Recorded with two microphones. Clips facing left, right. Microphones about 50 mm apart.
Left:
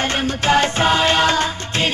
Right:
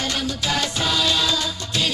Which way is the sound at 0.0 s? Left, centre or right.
Left.